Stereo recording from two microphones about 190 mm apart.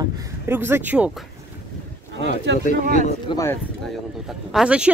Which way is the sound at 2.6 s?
40° left (ahead or behind).